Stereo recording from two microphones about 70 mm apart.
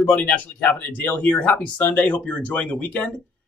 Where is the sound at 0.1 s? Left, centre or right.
Left.